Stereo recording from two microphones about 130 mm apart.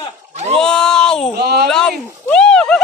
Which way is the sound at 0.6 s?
5° left (ahead or behind).